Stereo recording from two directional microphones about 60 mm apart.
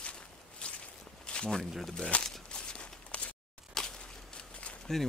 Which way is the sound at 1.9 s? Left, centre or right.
Centre.